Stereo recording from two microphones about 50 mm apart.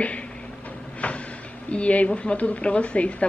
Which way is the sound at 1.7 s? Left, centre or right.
Left.